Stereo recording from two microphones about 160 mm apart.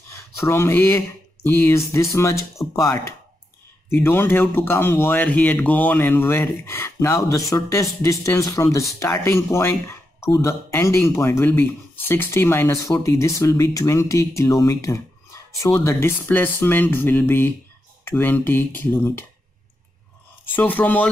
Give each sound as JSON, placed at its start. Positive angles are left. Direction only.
{"t": 0.4, "sound": "speech", "side_deg": 15}
{"t": 20.5, "sound": "speech", "side_deg": 10}